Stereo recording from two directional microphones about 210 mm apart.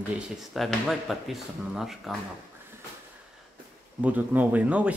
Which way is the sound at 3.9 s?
10° right (ahead or behind).